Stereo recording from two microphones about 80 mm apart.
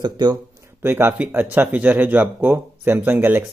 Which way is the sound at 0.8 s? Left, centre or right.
Right.